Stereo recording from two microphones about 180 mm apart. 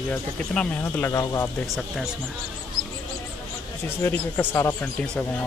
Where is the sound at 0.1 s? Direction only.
10° left (ahead or behind).